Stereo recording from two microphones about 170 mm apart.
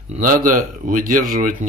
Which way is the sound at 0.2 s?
55° right (ahead or behind).